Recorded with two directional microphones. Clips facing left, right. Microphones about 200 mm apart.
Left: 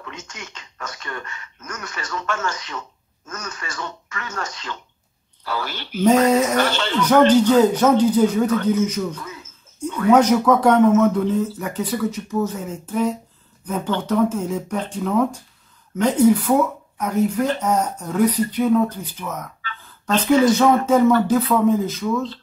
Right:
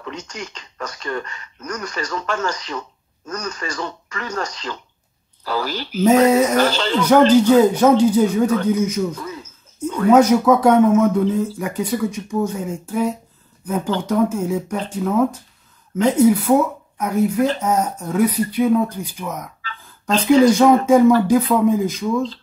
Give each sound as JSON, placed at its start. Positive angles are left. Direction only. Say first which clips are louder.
{"t": 0.1, "sound": "speech", "louder": "right 6 dB", "side_deg": -35}
{"t": 6.0, "sound": "speech", "louder": "right 2 dB", "side_deg": -10}
{"t": 6.5, "sound": "speech", "louder": "right 3 dB", "side_deg": -40}
{"t": 7.0, "sound": "speech", "louder": "right 1 dB", "side_deg": -10}